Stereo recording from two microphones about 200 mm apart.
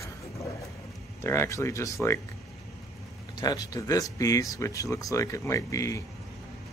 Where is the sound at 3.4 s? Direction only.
20° left (ahead or behind).